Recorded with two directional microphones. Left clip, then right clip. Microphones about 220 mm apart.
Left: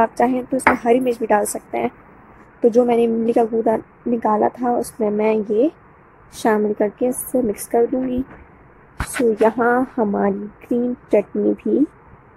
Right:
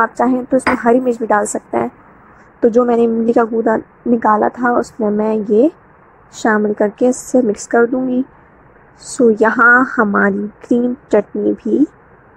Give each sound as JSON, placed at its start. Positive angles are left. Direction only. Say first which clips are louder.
{"t": 0.0, "sound": "a woman's voice", "louder": "right 2 dB", "side_deg": -20}
{"t": 9.2, "sound": "a woman's voice", "louder": "right 6 dB", "side_deg": -25}